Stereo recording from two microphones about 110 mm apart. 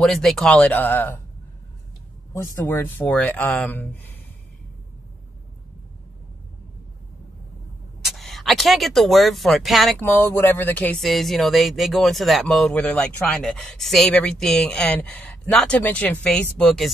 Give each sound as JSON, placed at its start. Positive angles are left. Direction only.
{"t": 0.0, "sound": "speech", "side_deg": 5}
{"t": 2.3, "sound": "speech", "side_deg": 25}
{"t": 8.0, "sound": "speech", "side_deg": 0}
{"t": 9.9, "sound": "speech", "side_deg": 15}
{"t": 11.0, "sound": "speech", "side_deg": 0}